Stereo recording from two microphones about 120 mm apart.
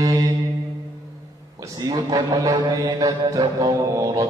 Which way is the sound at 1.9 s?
30° right (ahead or behind).